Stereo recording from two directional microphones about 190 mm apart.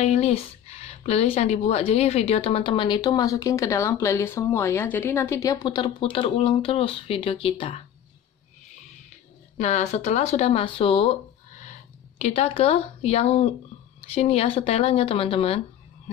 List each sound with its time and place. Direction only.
0.0 s speech: 35° left (ahead or behind)
9.6 s speech: 35° left (ahead or behind)
12.2 s speech: 35° left (ahead or behind)